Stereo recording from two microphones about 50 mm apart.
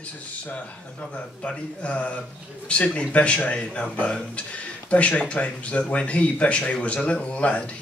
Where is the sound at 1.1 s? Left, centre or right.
Left.